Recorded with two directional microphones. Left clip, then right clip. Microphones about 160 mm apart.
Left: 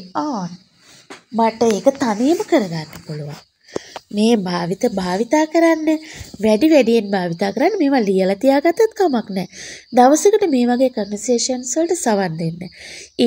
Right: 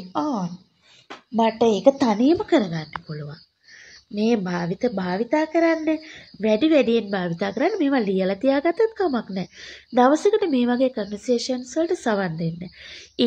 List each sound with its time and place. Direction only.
0.1 s speech: 25° left (ahead or behind)
1.3 s speech: 35° left (ahead or behind)
1.9 s speech: 10° left (ahead or behind)
4.1 s speech: 40° left (ahead or behind)